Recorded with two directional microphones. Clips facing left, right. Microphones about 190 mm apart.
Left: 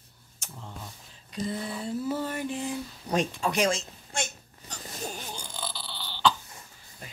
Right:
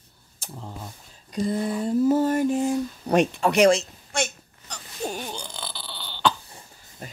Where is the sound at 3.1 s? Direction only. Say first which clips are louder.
Right 7 dB; 65° right (ahead or behind).